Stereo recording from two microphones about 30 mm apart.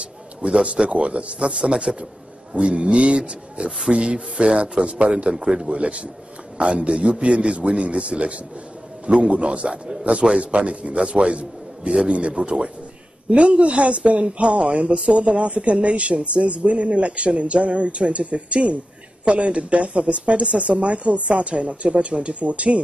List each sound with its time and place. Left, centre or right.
0.0 s a sound: right
0.8 s speech: right
2.5 s speech: right
10.4 s speech: right